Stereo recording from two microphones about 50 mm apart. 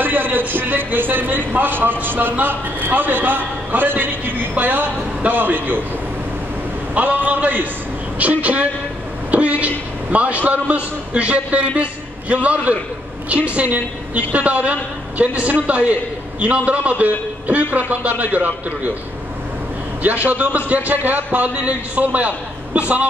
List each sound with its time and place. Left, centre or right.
0.0 s speech: right
7.0 s a man's voice: right
9.3 s a sound: right
10.1 s a man's voice: right
20.2 s a man's voice: right